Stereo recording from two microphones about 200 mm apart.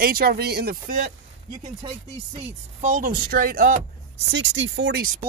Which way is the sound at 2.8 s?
40° right (ahead or behind).